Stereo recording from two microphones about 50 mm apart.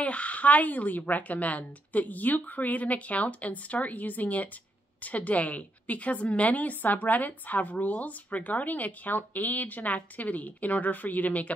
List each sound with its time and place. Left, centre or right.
0.0 s a woman's voice: left